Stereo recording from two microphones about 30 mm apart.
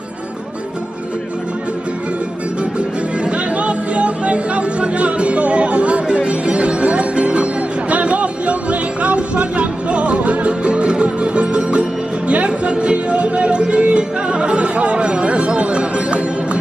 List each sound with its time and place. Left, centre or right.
3.3 s music: right